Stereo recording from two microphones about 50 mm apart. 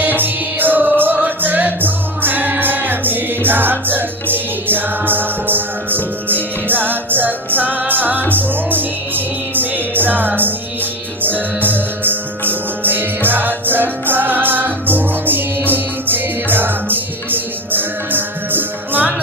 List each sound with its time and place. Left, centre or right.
0.0 s music: right